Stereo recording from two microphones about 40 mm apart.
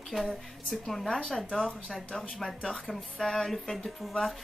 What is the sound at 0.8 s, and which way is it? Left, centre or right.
Speech, centre.